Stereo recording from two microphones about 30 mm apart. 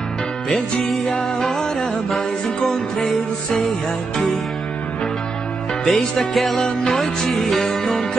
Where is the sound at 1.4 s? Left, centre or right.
Centre.